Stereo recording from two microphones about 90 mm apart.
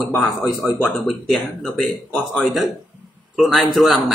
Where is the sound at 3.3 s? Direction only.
Centre (ahead or behind).